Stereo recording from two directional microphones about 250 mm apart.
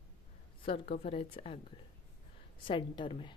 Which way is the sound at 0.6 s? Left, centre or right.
Left.